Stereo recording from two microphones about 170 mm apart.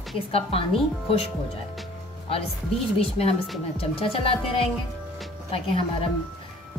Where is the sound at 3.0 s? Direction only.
35° left (ahead or behind).